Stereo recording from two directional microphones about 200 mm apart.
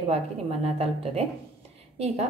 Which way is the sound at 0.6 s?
30° right (ahead or behind).